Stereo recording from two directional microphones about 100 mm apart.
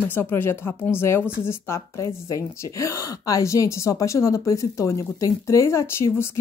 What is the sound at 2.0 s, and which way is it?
A woman's voice, 35° left (ahead or behind).